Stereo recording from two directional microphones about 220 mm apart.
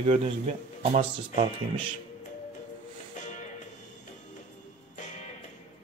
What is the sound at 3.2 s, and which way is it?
Music, 35° left (ahead or behind).